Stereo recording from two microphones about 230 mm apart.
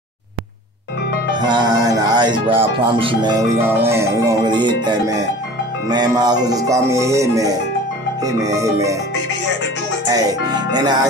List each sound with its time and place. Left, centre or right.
1.4 s speech: centre
5.9 s music: centre
10.0 s speech: centre